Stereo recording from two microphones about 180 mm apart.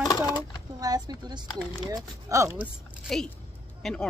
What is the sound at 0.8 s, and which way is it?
A woman's voice, 20° right (ahead or behind).